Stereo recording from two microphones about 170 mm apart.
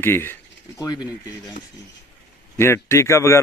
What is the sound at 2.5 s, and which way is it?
Speech, 15° left (ahead or behind).